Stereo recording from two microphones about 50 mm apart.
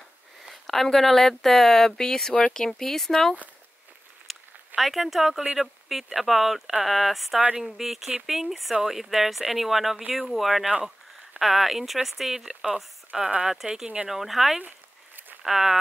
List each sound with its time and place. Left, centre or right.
0.4 s speech: centre
4.3 s a sound: centre
5.6 s speech: centre